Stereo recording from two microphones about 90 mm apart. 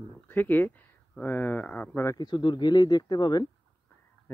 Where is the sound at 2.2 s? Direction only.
55° left (ahead or behind).